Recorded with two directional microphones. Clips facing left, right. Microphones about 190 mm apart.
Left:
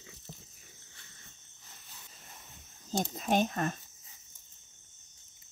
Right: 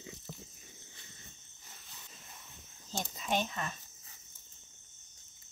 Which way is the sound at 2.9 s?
45° left (ahead or behind).